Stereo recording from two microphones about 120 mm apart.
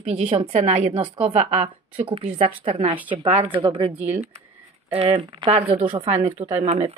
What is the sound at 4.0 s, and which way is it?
Speech, 70° right (ahead or behind).